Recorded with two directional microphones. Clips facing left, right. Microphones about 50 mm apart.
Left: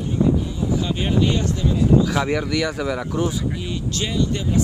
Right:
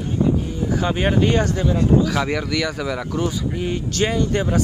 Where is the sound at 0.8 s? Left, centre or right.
Right.